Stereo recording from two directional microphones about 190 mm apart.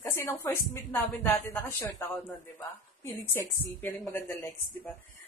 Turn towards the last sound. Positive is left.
turn(degrees=15)  # may be behind; listen again after turning